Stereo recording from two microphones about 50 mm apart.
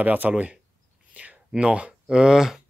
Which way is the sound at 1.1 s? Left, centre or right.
Right.